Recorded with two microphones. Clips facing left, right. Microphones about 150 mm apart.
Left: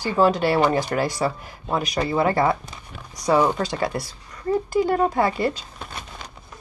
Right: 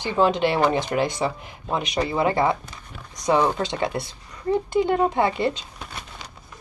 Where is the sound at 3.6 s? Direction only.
25° right (ahead or behind).